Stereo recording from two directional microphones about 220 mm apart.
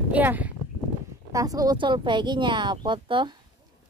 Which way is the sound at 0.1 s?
5° right (ahead or behind).